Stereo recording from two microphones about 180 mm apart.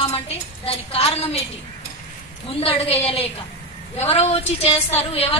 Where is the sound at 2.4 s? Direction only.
30° left (ahead or behind).